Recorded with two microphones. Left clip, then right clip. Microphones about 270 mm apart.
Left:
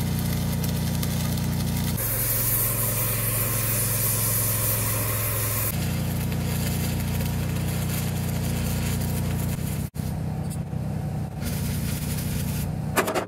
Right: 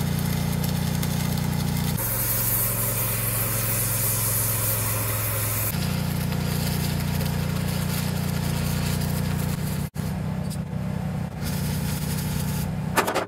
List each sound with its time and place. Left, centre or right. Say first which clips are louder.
12.9 s vehicle: right 1 dB; centre